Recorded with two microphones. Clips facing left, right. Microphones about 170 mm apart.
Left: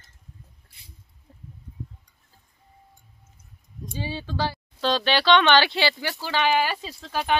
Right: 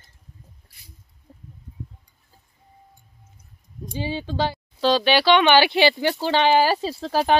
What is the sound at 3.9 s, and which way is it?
Speech, 15° right (ahead or behind).